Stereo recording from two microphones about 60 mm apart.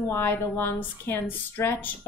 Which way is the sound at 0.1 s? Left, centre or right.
Left.